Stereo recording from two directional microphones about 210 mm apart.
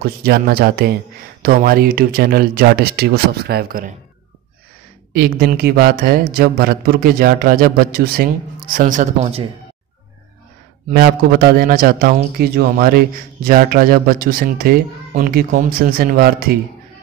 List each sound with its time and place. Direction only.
0.0 s a man's voice: 45° right (ahead or behind)
5.1 s a man's voice: 45° right (ahead or behind); by 9.5 s 30° right (ahead or behind)
10.9 s a man's voice: 50° right (ahead or behind)